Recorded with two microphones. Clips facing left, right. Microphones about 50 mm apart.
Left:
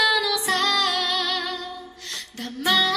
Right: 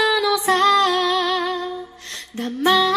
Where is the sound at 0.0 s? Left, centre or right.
Right.